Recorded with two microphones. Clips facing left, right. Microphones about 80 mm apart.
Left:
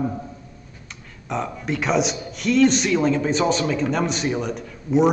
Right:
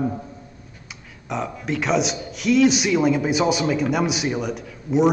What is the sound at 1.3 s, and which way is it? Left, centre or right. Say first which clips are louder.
Speech: even; centre.